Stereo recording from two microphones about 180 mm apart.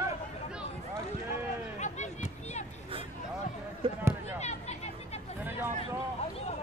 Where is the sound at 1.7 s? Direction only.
40° left (ahead or behind).